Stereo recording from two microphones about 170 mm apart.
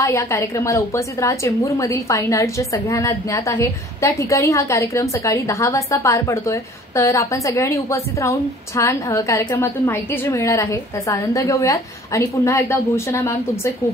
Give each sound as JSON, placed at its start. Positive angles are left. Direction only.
{"t": 0.0, "sound": "a woman's voice", "side_deg": 15}